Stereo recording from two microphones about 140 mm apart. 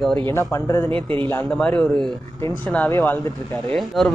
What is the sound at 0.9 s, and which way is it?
Speech, 40° right (ahead or behind).